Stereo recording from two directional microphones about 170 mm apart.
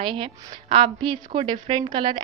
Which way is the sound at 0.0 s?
30° right (ahead or behind).